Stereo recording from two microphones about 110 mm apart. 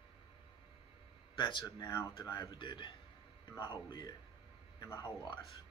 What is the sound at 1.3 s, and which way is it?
A man's voice, 45° left (ahead or behind).